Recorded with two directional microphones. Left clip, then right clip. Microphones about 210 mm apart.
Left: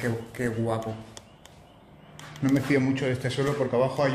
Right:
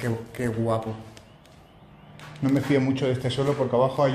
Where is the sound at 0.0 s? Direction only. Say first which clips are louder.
Even; 15° right (ahead or behind).